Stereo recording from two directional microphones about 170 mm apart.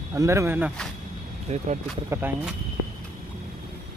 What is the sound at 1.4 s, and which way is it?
Speech, 45° right (ahead or behind).